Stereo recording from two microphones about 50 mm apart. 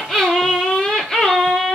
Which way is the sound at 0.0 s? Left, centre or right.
Centre.